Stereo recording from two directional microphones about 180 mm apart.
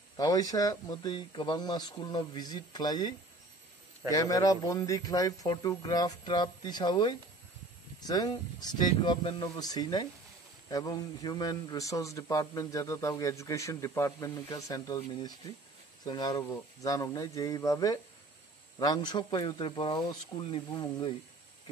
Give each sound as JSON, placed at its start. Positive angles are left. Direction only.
{"t": 0.2, "sound": "speech", "side_deg": 20}